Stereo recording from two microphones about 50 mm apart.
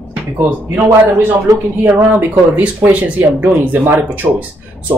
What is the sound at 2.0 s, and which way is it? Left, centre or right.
Speech, right.